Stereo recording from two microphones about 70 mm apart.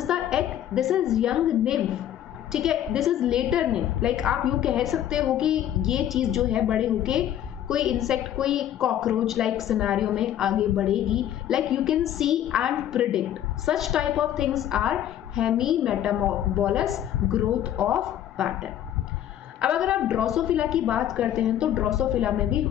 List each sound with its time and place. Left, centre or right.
0.0 s a sound: centre
0.7 s a woman's voice: centre
19.6 s a woman's voice: centre